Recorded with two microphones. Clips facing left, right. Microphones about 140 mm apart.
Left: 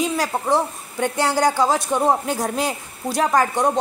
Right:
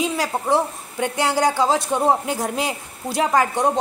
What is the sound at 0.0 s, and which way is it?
A woman's voice, 20° right (ahead or behind).